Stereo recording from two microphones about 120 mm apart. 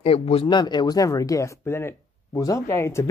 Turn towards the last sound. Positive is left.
turn(degrees=20)  # may be behind; listen again after turning